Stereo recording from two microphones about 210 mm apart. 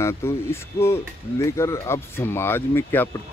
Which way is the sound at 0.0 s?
10° left (ahead or behind).